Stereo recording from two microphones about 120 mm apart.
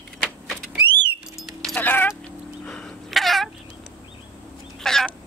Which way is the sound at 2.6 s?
5° left (ahead or behind).